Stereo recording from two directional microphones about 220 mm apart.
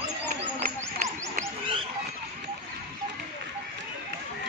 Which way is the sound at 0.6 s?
40° right (ahead or behind).